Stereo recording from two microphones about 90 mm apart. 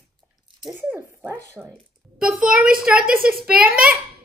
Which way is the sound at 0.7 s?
20° right (ahead or behind).